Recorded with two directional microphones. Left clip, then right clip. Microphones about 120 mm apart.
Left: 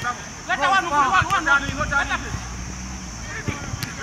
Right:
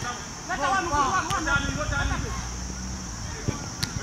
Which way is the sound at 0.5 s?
35° left (ahead or behind).